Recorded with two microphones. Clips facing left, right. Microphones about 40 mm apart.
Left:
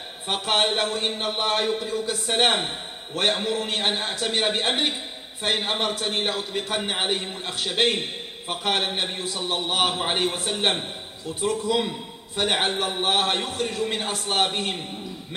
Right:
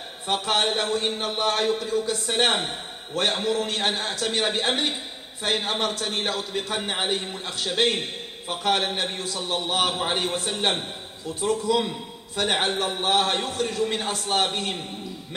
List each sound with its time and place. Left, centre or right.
0.3 s a man's voice: left
2.0 s a man's voice: left
3.3 s a man's voice: centre